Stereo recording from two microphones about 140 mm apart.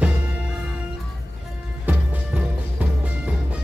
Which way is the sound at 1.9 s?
10° right (ahead or behind).